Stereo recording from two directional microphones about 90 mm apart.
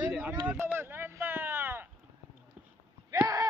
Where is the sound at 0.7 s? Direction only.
25° right (ahead or behind).